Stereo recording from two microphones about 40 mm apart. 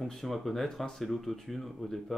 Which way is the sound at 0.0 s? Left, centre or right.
Centre.